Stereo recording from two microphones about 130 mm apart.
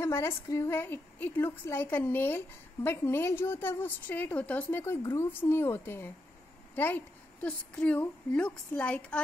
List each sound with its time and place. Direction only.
0.0 s a woman's voice: 20° left (ahead or behind)